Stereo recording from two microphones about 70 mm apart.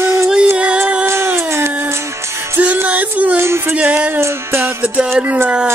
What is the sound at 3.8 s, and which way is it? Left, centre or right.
Speech, centre.